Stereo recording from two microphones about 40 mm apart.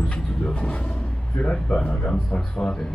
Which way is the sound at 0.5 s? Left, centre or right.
Left.